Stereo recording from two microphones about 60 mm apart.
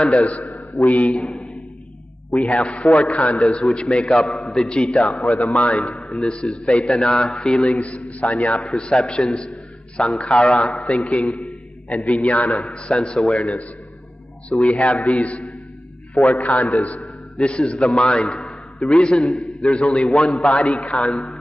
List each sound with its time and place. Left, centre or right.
0.0 s a man's voice: centre
2.5 s a man's voice: centre
4.3 s a sound: centre
4.6 s a man's voice: centre
14.8 s a man's voice: left